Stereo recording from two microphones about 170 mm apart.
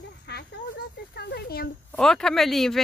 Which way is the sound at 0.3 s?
75° left (ahead or behind).